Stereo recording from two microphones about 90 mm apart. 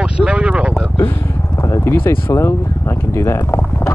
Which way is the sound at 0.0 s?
10° right (ahead or behind).